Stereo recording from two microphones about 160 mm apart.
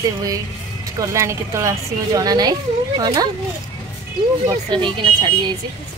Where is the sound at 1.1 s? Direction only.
20° right (ahead or behind).